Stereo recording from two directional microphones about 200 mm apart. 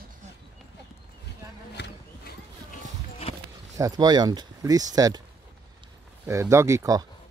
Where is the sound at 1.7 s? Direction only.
55° left (ahead or behind).